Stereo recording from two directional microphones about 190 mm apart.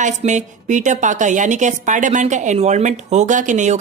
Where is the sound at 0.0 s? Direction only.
40° right (ahead or behind).